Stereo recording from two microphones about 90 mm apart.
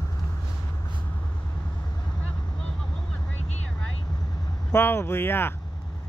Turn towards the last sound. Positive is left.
turn(degrees=25)  # may be behind; listen again after turning